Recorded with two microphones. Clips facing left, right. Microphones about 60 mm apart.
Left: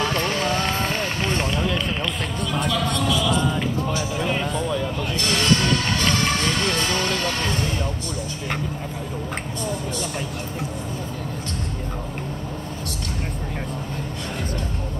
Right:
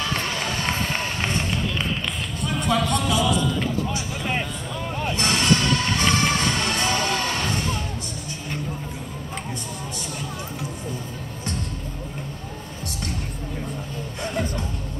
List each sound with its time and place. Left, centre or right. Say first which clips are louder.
2.7 s music: right 4 dB; right
5.1 s music: right 1 dB; right
6.6 s vehicle: left 1 dB; right